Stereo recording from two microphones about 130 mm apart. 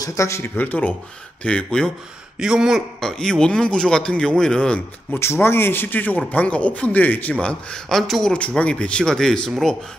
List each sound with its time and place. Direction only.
0.0 s a man's voice: 25° left (ahead or behind); by 1.9 s 5° left (ahead or behind)
2.3 s a man's voice: 5° right (ahead or behind)
5.2 s a man's voice: 20° left (ahead or behind); by 9.8 s 5° left (ahead or behind)